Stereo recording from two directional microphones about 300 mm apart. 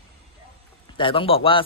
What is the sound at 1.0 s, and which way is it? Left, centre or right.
Speech, centre.